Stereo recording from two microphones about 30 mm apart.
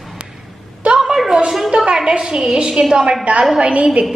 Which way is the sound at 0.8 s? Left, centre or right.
Right.